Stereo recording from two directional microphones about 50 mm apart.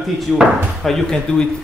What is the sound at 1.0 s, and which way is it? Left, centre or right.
Speech, centre.